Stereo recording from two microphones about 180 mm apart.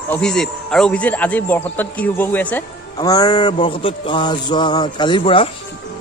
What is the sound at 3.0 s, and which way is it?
Speech, 20° left (ahead or behind).